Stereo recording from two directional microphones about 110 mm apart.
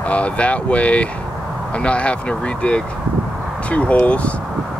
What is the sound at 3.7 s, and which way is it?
Speech, 10° left (ahead or behind).